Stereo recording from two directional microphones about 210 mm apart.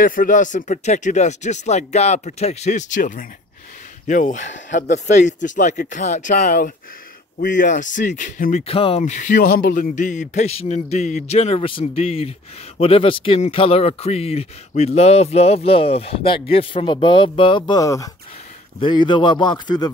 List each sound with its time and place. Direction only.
0.0 s speech: 40° left (ahead or behind); by 19.9 s 20° left (ahead or behind)